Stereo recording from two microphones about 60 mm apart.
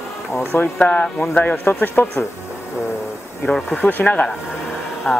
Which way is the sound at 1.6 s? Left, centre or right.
Left.